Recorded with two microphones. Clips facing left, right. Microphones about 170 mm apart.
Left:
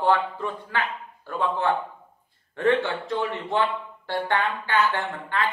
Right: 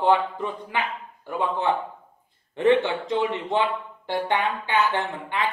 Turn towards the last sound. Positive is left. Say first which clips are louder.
# even
turn(degrees=-20)  # may be behind; listen again after turning